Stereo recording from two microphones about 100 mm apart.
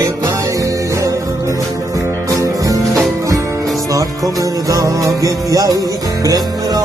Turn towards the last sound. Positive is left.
turn(degrees=-35)  # may be behind; listen again after turning